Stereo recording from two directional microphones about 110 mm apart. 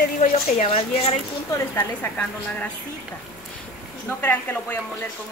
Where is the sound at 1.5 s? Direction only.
20° left (ahead or behind).